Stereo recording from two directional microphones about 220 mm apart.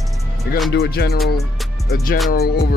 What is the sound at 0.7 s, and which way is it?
Speech, 45° left (ahead or behind).